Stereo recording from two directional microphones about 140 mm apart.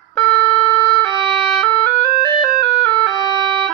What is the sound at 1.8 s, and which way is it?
Music, 25° left (ahead or behind).